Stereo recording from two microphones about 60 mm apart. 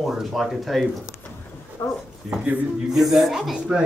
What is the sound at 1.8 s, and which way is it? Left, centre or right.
Speech, left.